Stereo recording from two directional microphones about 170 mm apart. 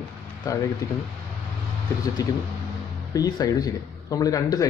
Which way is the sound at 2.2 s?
25° left (ahead or behind).